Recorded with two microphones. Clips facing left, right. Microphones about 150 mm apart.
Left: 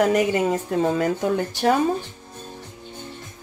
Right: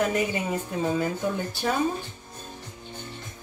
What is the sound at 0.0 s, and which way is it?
Speech, 85° left.